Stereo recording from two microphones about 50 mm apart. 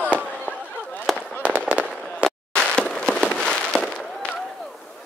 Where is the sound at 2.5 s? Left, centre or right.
Centre.